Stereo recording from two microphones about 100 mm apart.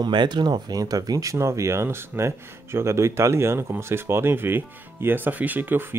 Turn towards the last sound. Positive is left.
turn(degrees=-20)  # may be behind; listen again after turning